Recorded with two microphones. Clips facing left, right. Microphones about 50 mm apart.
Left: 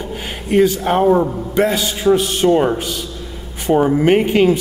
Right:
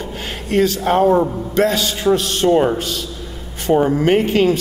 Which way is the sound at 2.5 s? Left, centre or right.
Centre.